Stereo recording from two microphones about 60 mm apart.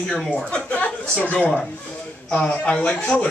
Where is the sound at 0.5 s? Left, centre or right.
Centre.